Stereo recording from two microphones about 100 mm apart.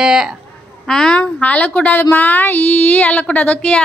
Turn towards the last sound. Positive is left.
turn(degrees=10)  # may be behind; listen again after turning